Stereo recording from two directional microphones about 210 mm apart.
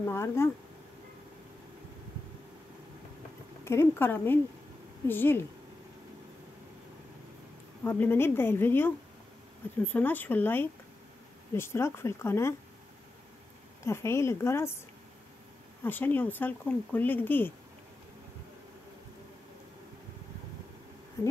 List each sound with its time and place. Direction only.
0.0 s speech: 10° left (ahead or behind)
3.6 s speech: 10° left (ahead or behind)
7.8 s speech: 10° left (ahead or behind)
9.9 s speech: 10° left (ahead or behind)
13.8 s speech: 10° left (ahead or behind)
15.8 s speech: 10° left (ahead or behind)
21.2 s a sound: 10° left (ahead or behind)